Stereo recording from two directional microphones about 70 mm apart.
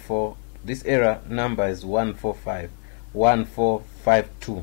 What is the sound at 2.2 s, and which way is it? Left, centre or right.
Speech, left.